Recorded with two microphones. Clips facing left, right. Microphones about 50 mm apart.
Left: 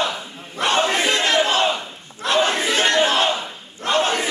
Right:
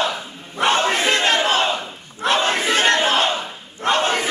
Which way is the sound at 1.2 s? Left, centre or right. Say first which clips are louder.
Even; right.